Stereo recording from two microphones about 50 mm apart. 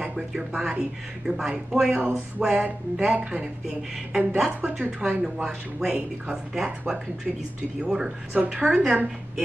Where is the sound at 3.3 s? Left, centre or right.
Centre.